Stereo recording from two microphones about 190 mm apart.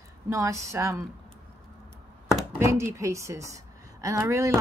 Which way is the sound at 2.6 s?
15° right (ahead or behind).